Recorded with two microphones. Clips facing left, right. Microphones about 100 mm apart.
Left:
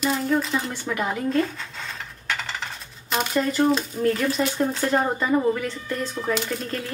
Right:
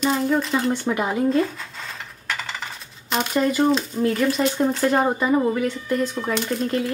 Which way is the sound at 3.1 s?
Centre (ahead or behind).